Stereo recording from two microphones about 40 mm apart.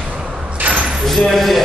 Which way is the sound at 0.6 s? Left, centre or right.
Right.